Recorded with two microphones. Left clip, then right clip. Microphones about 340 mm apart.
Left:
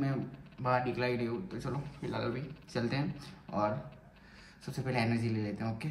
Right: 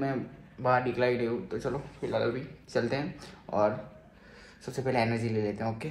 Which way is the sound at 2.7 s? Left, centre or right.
Centre.